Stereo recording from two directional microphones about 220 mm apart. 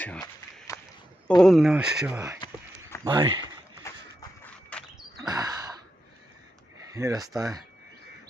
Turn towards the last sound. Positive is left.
turn(degrees=-15)  # may be behind; listen again after turning